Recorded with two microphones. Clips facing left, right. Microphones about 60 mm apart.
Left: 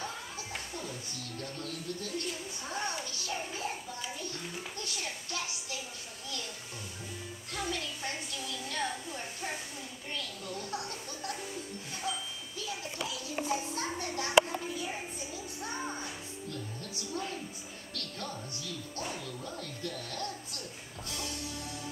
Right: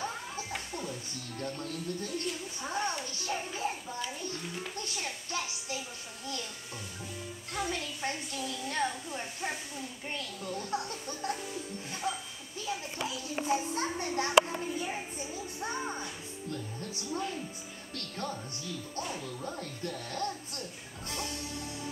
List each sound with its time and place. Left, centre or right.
1.4 s a child's voice: right
4.2 s a sound: right
7.5 s a sound: right
10.1 s a sound: right
12.1 s speech: right
13.7 s children playing: right
15.7 s music: centre
16.4 s music: right
17.9 s speech: right
21.1 s music: right